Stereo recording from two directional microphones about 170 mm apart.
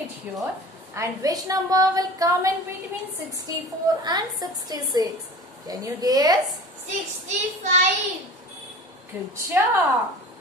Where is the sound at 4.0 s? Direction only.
25° right (ahead or behind).